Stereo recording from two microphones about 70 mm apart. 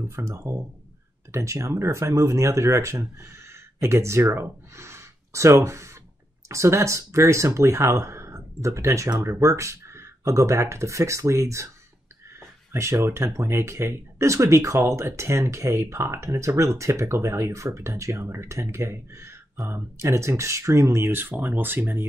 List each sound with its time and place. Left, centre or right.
0.0 s speech: right